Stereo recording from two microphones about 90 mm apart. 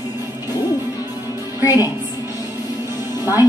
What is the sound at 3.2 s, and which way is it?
Speech, 40° left (ahead or behind).